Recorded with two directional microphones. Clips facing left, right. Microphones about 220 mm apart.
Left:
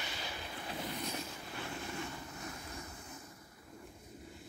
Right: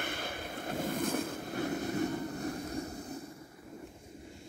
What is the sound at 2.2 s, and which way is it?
Vehicle, 35° right (ahead or behind).